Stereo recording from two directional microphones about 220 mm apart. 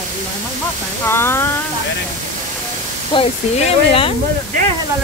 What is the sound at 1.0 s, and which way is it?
Speech, 10° left (ahead or behind).